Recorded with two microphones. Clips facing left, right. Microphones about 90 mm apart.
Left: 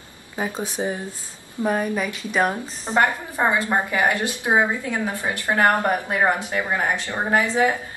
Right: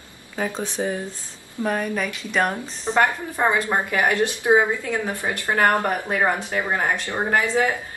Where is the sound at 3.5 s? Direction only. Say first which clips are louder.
Even; 20° left (ahead or behind).